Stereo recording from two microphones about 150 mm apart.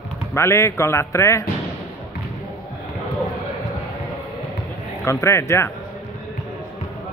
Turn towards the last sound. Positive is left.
turn(degrees=20)  # may be behind; listen again after turning